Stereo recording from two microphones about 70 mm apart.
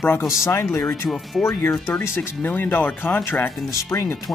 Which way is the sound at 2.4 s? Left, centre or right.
Left.